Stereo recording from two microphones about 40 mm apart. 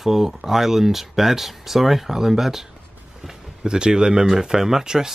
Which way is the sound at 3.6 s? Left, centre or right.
Right.